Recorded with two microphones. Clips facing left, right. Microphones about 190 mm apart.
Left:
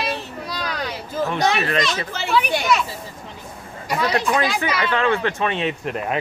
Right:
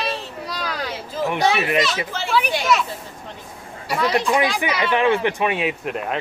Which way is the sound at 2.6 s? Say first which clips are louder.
Even; centre (ahead or behind).